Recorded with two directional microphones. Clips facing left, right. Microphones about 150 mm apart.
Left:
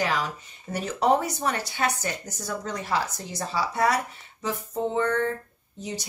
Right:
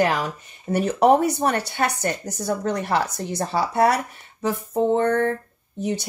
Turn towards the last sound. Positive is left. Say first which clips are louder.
# right 9 dB
turn(degrees=-60)  # may be behind; listen again after turning